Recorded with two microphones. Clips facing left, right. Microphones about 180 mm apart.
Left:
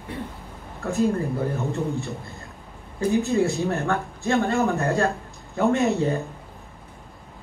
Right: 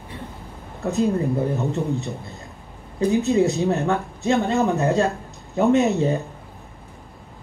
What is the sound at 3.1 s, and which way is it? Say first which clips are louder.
Speech: right 2 dB; 20° right (ahead or behind).